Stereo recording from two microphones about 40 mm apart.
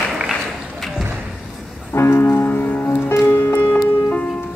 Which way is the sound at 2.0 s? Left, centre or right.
Left.